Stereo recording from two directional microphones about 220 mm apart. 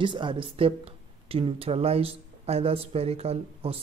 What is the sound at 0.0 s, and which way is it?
Speech, 20° right (ahead or behind).